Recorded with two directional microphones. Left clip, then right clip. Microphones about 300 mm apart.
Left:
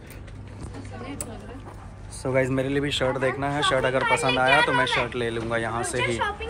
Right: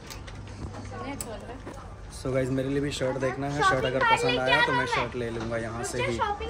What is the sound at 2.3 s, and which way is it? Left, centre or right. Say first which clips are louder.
Speech: left 4 dB; centre.